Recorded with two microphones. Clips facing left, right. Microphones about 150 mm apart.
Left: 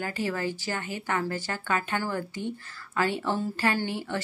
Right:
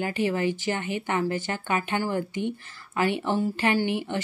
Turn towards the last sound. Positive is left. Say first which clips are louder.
# right 4 dB
turn(degrees=-20)  # may be behind; listen again after turning